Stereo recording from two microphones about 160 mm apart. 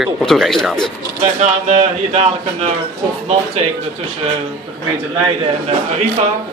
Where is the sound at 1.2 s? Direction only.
45° right (ahead or behind).